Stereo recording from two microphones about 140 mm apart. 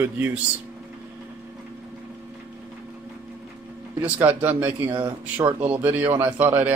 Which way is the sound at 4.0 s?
15° right (ahead or behind).